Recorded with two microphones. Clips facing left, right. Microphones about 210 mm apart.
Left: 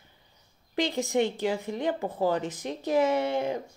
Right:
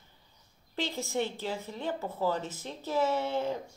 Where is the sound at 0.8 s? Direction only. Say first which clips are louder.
Left 6 dB; 15° left (ahead or behind).